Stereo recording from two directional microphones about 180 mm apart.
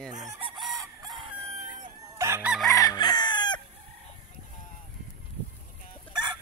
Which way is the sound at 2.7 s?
20° left (ahead or behind).